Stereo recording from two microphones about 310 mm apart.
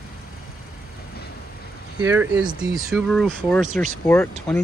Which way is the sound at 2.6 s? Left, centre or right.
Centre.